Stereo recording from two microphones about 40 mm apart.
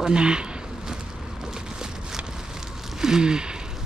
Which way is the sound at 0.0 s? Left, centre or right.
Right.